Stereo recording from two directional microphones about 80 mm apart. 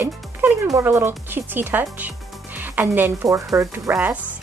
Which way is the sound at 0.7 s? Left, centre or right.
Right.